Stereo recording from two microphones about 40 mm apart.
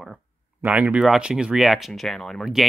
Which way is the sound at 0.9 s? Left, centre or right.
Centre.